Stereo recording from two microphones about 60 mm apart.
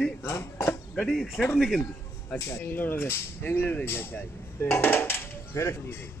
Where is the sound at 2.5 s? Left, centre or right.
Left.